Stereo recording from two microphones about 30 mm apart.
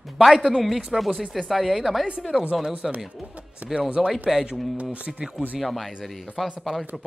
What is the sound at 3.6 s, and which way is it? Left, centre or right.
Speech, right.